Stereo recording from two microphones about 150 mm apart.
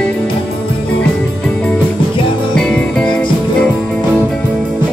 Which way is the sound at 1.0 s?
10° left (ahead or behind).